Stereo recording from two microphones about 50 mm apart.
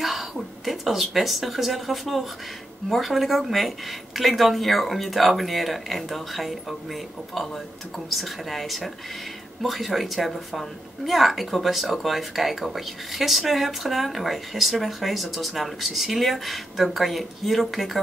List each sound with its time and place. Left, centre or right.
0.0 s a woman's voice: centre